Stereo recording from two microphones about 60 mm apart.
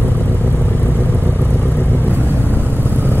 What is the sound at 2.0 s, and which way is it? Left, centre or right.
Vehicle, right.